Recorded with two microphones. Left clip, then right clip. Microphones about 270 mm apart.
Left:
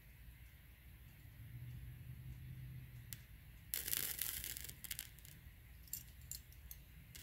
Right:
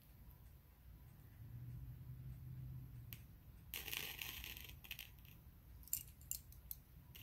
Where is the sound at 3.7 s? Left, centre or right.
Centre.